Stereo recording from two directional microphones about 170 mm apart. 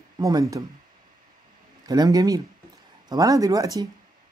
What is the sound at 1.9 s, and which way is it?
Speech, 20° right (ahead or behind).